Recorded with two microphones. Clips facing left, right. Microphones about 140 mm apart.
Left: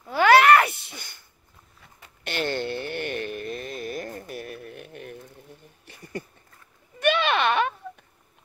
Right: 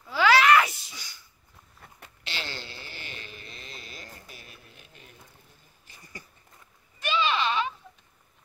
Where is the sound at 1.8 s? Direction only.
55° right (ahead or behind).